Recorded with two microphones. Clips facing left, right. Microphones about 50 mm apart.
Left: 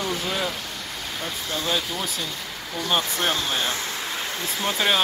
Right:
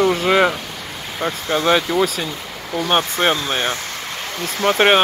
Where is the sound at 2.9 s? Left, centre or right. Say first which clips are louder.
Right 6 dB; right.